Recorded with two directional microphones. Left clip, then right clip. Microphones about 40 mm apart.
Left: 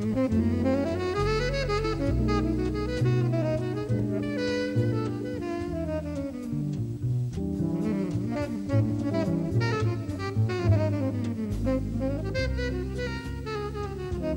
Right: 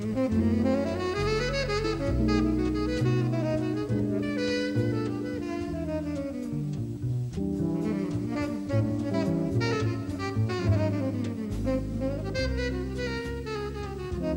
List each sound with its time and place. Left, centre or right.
0.0 s saxophone: right
7.7 s saxophone: right